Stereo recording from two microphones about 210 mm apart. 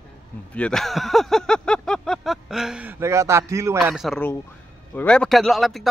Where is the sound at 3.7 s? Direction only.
Centre (ahead or behind).